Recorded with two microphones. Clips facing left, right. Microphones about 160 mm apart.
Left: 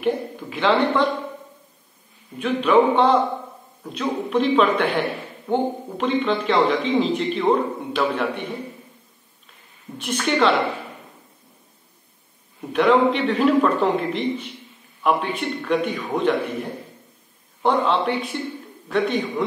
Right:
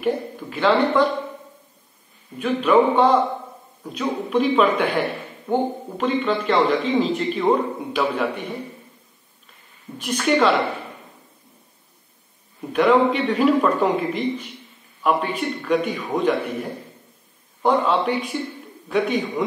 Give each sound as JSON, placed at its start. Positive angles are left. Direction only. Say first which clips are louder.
{"t": 0.0, "sound": "a sound", "louder": "even", "side_deg": 0}
{"t": 2.3, "sound": "a man's voice", "louder": "even", "side_deg": 0}
{"t": 9.9, "sound": "a man's voice", "louder": "right 2 dB", "side_deg": 0}
{"t": 12.7, "sound": "a man's voice", "louder": "even", "side_deg": -5}
{"t": 17.6, "sound": "a man's voice", "louder": "right 1 dB", "side_deg": -5}